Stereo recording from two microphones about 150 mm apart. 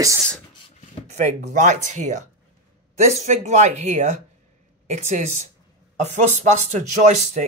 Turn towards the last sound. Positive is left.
turn(degrees=-50)  # may be behind; listen again after turning